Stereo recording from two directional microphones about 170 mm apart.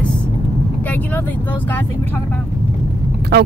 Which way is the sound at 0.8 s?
10° left (ahead or behind).